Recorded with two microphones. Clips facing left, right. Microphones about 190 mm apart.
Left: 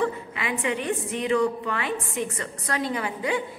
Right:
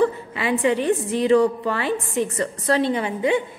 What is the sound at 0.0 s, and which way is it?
A woman's voice, 35° right (ahead or behind).